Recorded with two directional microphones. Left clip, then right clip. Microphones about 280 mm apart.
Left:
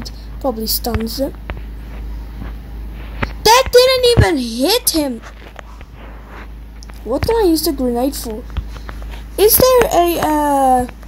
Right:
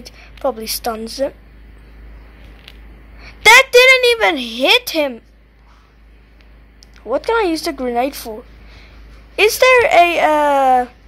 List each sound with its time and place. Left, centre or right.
0.0 s a woman's voice: centre
3.9 s a sound: centre
4.3 s speech: right
7.1 s speech: centre
9.5 s speech: centre